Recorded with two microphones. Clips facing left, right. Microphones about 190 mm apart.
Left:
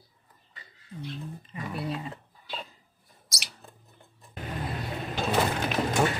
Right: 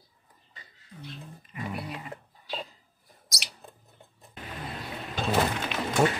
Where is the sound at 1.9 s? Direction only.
25° left (ahead or behind).